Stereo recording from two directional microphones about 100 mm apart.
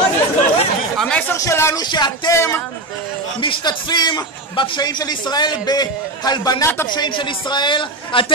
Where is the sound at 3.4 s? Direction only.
50° left (ahead or behind).